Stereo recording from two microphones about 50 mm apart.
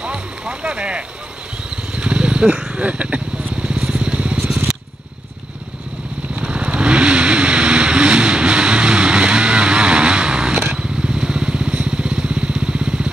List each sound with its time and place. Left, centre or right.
0.0 s boat: right
1.7 s vehicle: right
2.8 s speech: right
3.6 s vehicle: right
6.3 s vehicle: right